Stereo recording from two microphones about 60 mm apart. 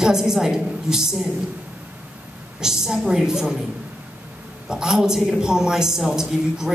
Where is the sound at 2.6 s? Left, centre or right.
Centre.